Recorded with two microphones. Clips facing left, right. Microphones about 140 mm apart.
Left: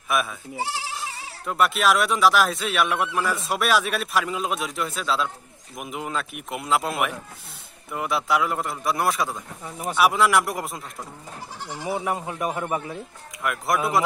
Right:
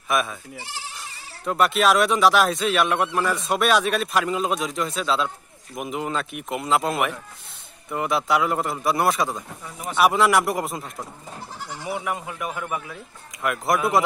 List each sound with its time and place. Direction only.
0.1 s speech: centre (ahead or behind)
1.4 s speech: centre (ahead or behind)
11.9 s speech: 30° left (ahead or behind)
13.4 s speech: centre (ahead or behind)